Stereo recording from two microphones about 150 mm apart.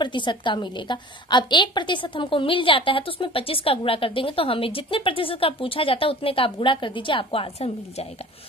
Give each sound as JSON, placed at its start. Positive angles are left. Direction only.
{"t": 0.0, "sound": "a woman's voice", "side_deg": 30}